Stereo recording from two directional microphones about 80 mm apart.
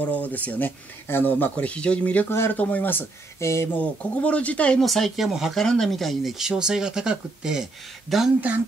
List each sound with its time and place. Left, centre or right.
0.0 s speech: centre
3.3 s speech: left
3.7 s speech: centre
4.8 s speech: centre